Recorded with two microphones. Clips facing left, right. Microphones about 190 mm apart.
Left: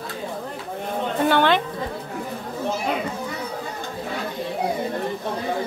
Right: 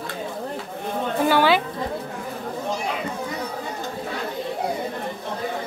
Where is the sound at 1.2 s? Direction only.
5° right (ahead or behind).